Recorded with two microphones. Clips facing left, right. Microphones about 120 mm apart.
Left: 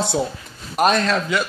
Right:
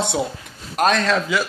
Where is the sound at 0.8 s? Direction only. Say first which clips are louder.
Even; 5° left (ahead or behind).